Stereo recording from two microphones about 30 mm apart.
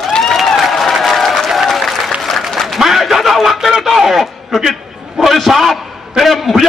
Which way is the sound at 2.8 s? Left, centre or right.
Centre.